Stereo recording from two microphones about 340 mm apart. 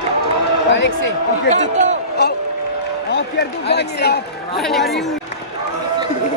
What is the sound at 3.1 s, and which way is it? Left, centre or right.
A man's voice, left.